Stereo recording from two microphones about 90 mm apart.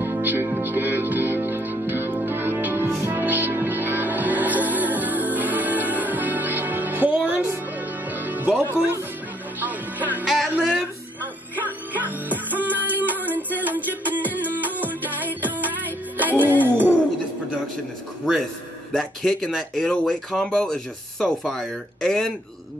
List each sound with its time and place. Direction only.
0.0 s music: 25° right (ahead or behind)
10.2 s music: 5° right (ahead or behind)
11.6 s music: 20° right (ahead or behind)
16.6 s a sound: 20° right (ahead or behind)
18.9 s speech: 5° left (ahead or behind)